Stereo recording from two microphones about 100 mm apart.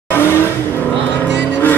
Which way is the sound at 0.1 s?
25° left (ahead or behind).